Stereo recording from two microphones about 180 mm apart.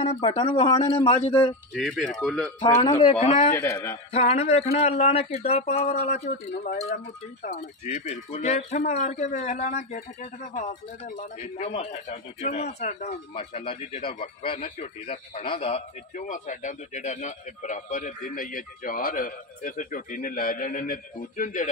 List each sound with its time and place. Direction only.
0.0 s speech: 35° left (ahead or behind)
1.7 s speech: 5° left (ahead or behind)
2.6 s speech: 25° left (ahead or behind)
3.3 s speech: 40° left (ahead or behind)
3.5 s a man's voice: 15° left (ahead or behind)
4.1 s speech: 35° left (ahead or behind)
6.6 s a man's voice: 50° left (ahead or behind)
7.8 s a man's voice: 35° left (ahead or behind)